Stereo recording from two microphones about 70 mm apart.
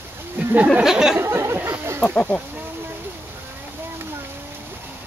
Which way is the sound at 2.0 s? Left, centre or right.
Centre.